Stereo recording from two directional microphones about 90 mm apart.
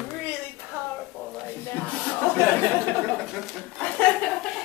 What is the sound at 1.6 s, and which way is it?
Music, 20° left (ahead or behind).